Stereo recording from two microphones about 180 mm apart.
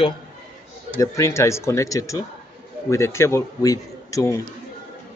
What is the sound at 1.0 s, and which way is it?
A man's voice, 15° left (ahead or behind).